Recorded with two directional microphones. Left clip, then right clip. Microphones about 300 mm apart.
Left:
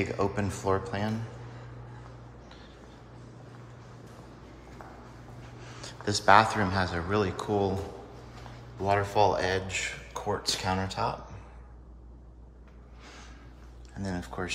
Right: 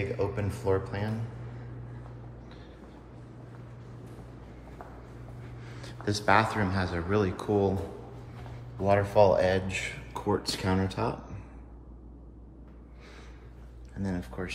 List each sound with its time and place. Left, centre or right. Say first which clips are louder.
0.0 s speech: left 2 dB; centre
5.6 s speech: left 3 dB; centre
8.8 s speech: right 2 dB; centre
13.9 s speech: left 1 dB; centre